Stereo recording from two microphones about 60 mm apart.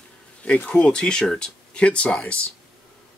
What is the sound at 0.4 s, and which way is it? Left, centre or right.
Speech, left.